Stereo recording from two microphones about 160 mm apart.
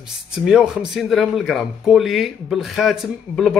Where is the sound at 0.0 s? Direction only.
Centre (ahead or behind).